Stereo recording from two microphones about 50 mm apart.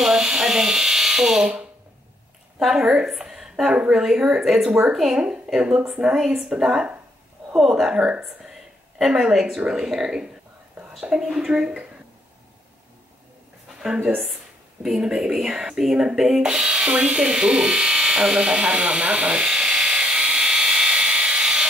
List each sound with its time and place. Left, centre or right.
0.0 s speech: centre
2.6 s speech: centre
3.1 s a sound: centre
3.9 s speech: centre
5.1 s speech: centre
7.5 s speech: centre
7.9 s a woman's voice: centre
13.7 s a sound: centre
14.8 s speech: centre
17.2 s electric shaver: centre